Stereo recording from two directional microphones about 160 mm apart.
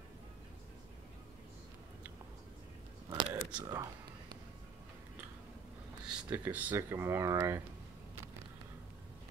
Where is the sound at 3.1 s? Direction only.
25° right (ahead or behind).